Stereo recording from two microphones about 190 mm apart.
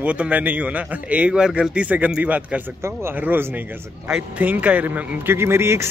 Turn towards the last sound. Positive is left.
turn(degrees=-15)  # may be behind; listen again after turning